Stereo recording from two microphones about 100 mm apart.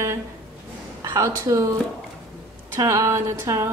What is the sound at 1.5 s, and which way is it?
Speech, 35° right (ahead or behind).